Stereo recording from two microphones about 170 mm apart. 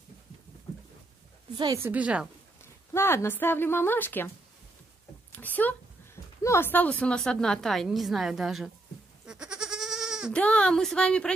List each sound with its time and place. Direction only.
1.6 s a woman's voice: 20° right (ahead or behind)
1.9 s a woman's voice: 5° right (ahead or behind)
2.6 s speech: 15° left (ahead or behind)
5.3 s a sound: 10° left (ahead or behind)
6.4 s a woman's voice: 15° left (ahead or behind); by 8.7 s centre (ahead or behind)
9.2 s goat: 5° right (ahead or behind)
10.3 s a woman's voice: 5° left (ahead or behind)